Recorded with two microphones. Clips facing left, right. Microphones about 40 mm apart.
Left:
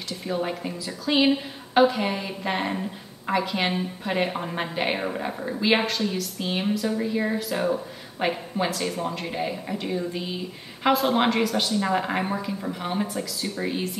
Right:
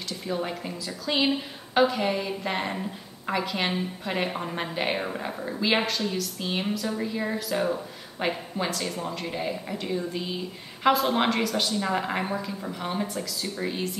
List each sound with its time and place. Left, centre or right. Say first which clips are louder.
0.3 s a woman's voice: left 3 dB; centre